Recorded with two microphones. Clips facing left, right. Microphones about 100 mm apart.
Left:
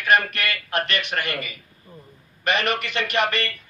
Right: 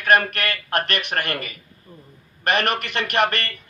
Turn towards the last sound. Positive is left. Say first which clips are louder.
# right 2 dB
turn(degrees=-55)  # may be behind; listen again after turning